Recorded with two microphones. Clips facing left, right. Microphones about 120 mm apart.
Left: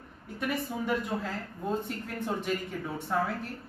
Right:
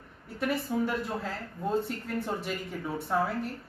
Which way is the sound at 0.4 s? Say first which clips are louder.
Right 3 dB; centre (ahead or behind).